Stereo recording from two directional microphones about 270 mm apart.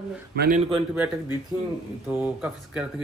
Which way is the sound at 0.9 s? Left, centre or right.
Centre.